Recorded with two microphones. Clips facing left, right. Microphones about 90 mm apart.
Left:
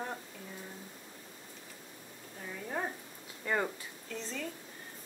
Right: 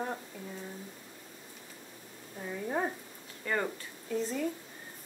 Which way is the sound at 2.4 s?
15° right (ahead or behind).